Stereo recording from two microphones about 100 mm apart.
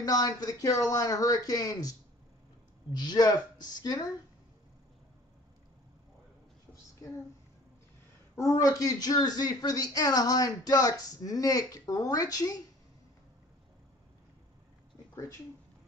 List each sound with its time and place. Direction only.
0.0 s speech: 40° left (ahead or behind)
6.7 s a sound: 30° left (ahead or behind)
8.4 s speech: 35° left (ahead or behind)